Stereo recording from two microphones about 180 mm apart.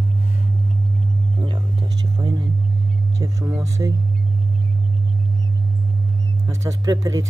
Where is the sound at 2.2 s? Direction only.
20° right (ahead or behind).